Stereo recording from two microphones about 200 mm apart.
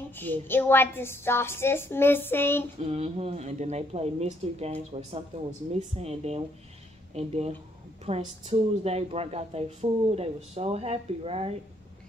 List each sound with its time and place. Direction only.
0.1 s a woman's voice: 10° left (ahead or behind)
2.8 s speech: 30° right (ahead or behind)